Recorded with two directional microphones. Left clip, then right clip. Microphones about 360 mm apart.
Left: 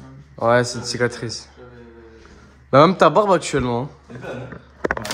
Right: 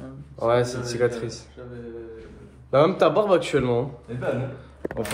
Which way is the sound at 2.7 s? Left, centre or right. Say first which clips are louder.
Left 6 dB; left.